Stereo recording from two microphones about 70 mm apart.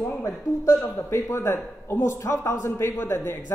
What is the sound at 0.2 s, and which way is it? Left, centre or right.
A man's voice, left.